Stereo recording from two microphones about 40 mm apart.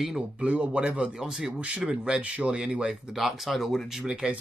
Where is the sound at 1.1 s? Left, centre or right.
Centre.